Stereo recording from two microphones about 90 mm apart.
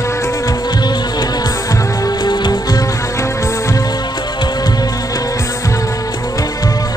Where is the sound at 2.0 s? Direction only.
50° left (ahead or behind).